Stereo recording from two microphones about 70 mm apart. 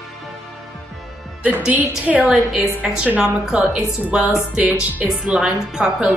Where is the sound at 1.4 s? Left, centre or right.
Right.